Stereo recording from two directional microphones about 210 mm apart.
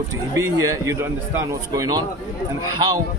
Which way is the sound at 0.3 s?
15° right (ahead or behind).